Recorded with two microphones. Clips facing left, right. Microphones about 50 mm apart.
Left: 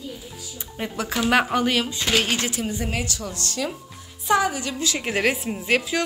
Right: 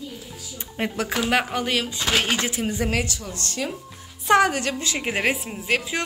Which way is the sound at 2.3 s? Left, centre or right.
Right.